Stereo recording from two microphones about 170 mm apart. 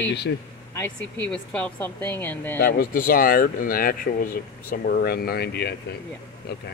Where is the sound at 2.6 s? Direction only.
60° left (ahead or behind).